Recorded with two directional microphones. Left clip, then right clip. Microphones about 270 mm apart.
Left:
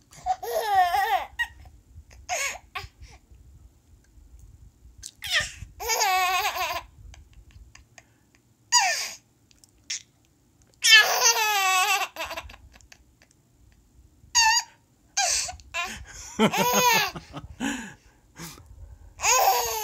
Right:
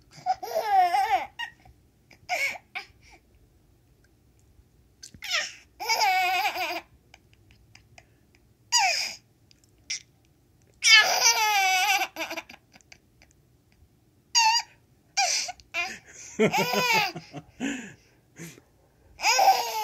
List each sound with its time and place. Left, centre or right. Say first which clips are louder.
0.1 s babbling: left 1 dB; centre
5.2 s babbling: left 3 dB; centre
10.8 s baby cry: left 1 dB; centre
14.3 s a sound: left 1 dB; centre
16.5 s laughter: left 4 dB; centre
17.3 s a sound: left 2 dB; left
19.1 s babbling: right 1 dB; centre